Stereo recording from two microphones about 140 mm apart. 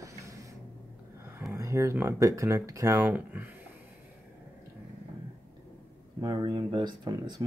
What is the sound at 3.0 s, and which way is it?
Speech, 10° right (ahead or behind).